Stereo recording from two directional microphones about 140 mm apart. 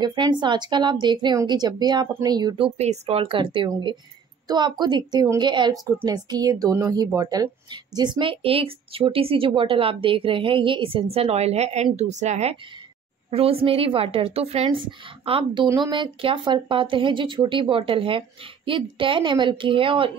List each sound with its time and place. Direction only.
0.0 s a woman's voice: 30° right (ahead or behind)